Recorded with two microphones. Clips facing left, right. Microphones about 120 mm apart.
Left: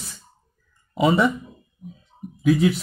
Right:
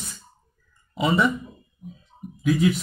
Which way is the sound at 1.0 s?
45° left (ahead or behind).